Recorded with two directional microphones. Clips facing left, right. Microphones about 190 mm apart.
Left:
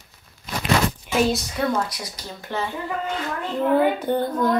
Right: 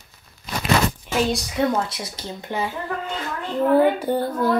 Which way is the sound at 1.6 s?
25° right (ahead or behind).